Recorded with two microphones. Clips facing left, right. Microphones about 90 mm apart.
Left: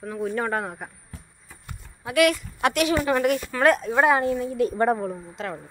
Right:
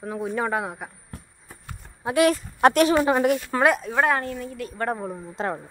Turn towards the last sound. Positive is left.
turn(degrees=-30)  # may be behind; listen again after turning